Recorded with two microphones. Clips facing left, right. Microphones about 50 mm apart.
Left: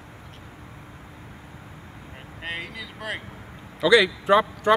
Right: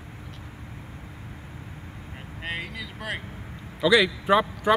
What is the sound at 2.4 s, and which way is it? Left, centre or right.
Speech, centre.